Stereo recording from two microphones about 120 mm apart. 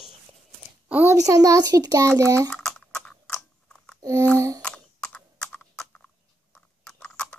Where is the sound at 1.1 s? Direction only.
30° right (ahead or behind).